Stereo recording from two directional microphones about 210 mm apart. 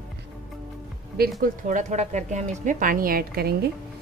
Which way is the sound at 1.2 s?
40° right (ahead or behind).